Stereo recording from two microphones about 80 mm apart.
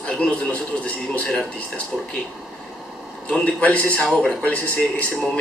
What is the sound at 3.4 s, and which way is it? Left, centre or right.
Speech, centre.